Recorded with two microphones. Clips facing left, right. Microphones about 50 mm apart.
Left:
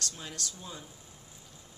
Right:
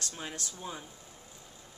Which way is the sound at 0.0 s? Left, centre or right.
Right.